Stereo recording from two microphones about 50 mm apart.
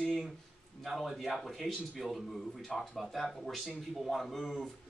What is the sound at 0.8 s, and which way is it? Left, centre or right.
Speech, centre.